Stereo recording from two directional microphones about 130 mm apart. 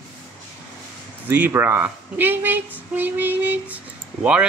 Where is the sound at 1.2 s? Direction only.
15° right (ahead or behind).